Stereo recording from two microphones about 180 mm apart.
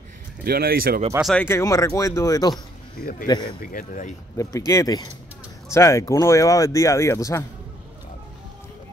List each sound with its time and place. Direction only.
0.4 s speech: 55° right (ahead or behind)
1.2 s speech: 10° left (ahead or behind)
3.4 s speech: 50° left (ahead or behind)
4.4 s speech: 20° left (ahead or behind)